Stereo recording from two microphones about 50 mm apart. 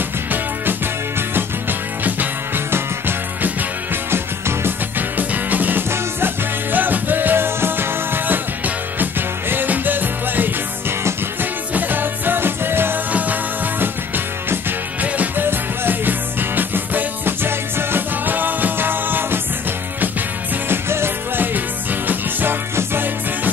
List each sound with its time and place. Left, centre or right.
1.3 s music: right
3.4 s music: right
4.9 s music: right
11.7 s music: right
13.1 s music: right
15.4 s music: right
20.6 s music: right
21.5 s music: right